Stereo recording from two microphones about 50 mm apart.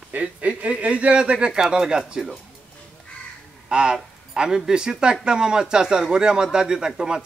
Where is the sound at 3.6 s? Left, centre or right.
Centre.